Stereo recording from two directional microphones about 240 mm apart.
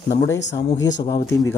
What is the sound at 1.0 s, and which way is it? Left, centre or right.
Speech, centre.